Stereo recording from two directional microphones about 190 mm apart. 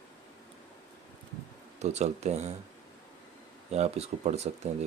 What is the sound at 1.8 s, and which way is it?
Speech, 35° right (ahead or behind).